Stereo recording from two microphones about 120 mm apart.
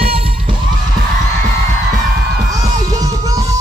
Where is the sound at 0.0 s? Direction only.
55° right (ahead or behind).